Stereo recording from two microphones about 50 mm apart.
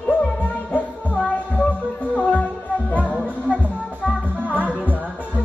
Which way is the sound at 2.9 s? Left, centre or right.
Left.